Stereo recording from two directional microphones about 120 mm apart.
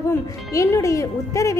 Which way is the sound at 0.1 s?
25° left (ahead or behind).